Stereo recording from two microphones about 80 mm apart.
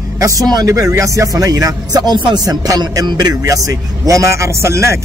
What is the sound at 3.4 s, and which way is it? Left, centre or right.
A man's voice, right.